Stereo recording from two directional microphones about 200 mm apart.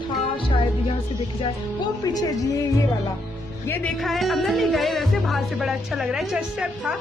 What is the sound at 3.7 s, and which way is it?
Music, 5° left (ahead or behind).